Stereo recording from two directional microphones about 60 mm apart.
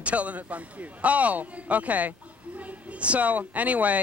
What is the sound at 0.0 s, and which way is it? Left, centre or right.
A man's voice, right.